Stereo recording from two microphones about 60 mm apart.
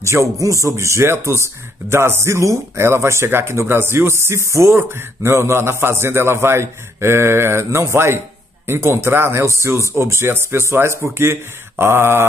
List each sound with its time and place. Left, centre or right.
0.0 s speech: right